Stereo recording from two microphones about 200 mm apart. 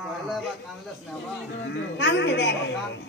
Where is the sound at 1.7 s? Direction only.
60° left (ahead or behind).